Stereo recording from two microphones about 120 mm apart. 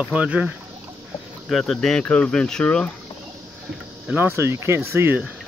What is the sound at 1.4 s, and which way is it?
Speech, centre (ahead or behind).